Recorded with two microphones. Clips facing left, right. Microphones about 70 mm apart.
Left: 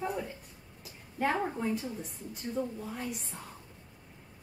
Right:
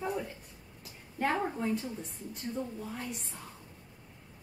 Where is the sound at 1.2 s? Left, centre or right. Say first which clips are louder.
Even; centre.